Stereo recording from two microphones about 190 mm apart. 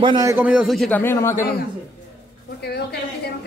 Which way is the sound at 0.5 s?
5° right (ahead or behind).